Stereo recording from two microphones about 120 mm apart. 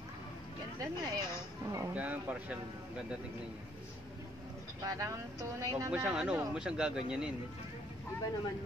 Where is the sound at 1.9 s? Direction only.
10° right (ahead or behind).